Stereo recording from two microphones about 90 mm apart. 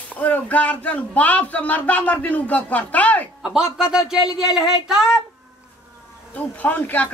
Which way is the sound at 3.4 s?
5° right (ahead or behind).